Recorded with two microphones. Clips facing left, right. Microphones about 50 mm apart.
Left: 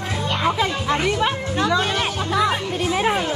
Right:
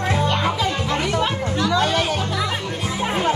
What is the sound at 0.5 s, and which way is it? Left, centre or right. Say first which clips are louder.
Music: left 1 dB; left.